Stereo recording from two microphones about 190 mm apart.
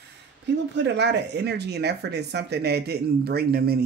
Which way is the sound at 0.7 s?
65° right (ahead or behind).